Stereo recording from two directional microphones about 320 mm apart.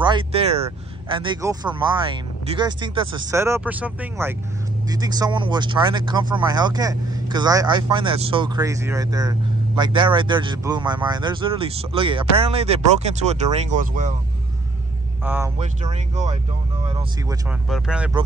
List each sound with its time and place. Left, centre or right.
0.0 s speech: centre
15.2 s speech: centre
15.6 s speech: right
17.5 s speech: centre